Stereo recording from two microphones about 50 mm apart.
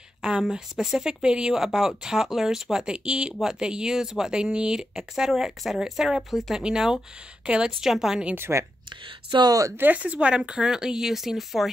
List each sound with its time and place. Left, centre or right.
0.4 s a woman's voice: centre
7.8 s speech: centre
8.4 s speech: right
9.8 s a woman's voice: right
10.0 s speech: right; by 11.7 s centre